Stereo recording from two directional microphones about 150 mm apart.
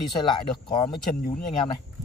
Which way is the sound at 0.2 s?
30° left (ahead or behind).